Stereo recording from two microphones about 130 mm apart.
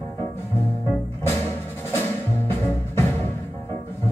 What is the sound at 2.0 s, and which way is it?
Music, 15° left (ahead or behind).